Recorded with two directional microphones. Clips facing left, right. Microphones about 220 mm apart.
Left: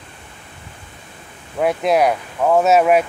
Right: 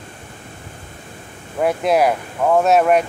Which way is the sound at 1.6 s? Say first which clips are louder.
Even; centre (ahead or behind).